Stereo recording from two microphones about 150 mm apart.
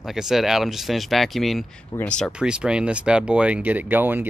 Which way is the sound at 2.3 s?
5° right (ahead or behind).